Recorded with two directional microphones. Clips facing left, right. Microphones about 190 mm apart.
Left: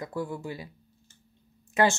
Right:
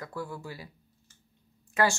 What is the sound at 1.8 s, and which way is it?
Speech, 20° left (ahead or behind).